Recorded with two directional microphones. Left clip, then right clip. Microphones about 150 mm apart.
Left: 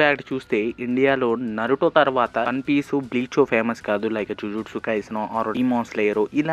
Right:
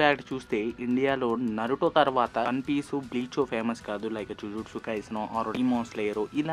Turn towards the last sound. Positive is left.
turn(degrees=30)  # may be behind; listen again after turning